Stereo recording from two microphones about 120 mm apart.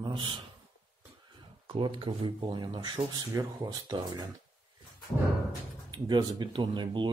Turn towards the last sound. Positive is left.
turn(degrees=-40)  # may be behind; listen again after turning